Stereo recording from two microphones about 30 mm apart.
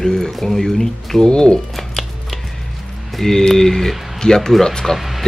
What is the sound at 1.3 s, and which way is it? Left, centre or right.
Speech, left.